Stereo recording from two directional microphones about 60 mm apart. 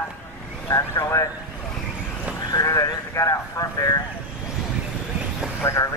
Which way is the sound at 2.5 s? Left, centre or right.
Left.